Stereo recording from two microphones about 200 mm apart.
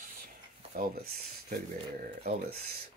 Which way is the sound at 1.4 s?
50° right (ahead or behind).